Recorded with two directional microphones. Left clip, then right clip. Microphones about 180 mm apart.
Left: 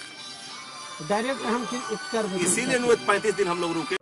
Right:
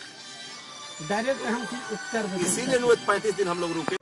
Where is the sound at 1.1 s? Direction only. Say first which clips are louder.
Left 1 dB; 15° right (ahead or behind).